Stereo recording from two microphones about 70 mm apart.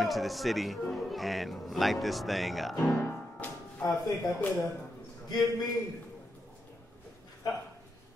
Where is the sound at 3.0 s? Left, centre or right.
Left.